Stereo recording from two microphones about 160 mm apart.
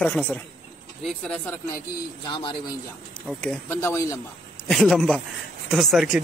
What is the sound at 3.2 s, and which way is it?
Speech, 10° left (ahead or behind).